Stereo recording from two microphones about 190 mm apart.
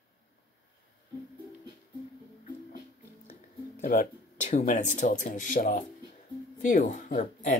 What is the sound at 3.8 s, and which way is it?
Speech, 45° left (ahead or behind).